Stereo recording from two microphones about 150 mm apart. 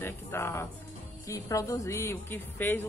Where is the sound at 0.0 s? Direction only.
15° left (ahead or behind).